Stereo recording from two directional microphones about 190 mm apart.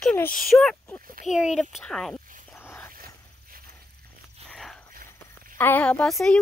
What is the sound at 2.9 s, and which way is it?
Dog, 50° right (ahead or behind).